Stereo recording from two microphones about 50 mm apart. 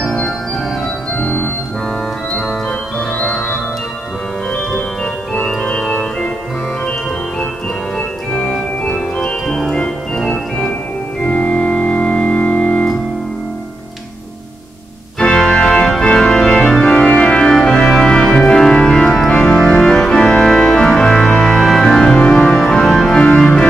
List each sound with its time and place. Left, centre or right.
0.0 s organ: centre
1.1 s organ: left
3.2 s organ: centre
5.6 s organ: left
8.3 s organ: left
11.2 s organ: left
15.1 s organ: centre